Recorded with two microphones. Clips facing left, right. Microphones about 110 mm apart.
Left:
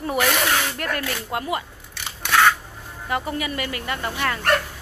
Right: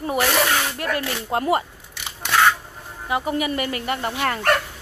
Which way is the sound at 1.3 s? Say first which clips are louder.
Right 8 dB; 35° right (ahead or behind).